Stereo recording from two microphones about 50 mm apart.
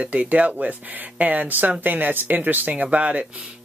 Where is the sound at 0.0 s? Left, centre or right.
Right.